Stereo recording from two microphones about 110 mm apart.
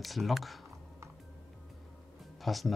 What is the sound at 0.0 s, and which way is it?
Speech, centre (ahead or behind).